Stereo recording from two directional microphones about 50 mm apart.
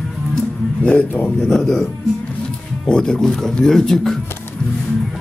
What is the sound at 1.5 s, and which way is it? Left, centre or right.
Speech, centre.